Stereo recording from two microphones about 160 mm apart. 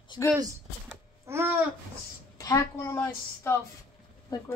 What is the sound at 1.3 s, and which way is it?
Babbling, 15° right (ahead or behind).